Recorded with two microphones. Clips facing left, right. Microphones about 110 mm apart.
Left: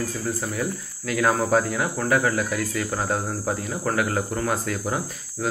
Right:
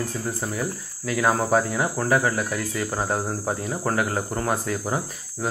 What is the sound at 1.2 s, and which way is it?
Speech, 20° right (ahead or behind).